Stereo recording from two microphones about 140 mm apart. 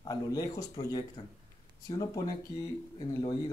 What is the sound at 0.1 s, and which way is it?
Speech, 25° left (ahead or behind).